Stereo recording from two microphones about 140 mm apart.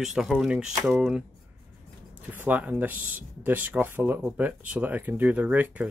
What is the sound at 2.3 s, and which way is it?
Speech, 10° right (ahead or behind).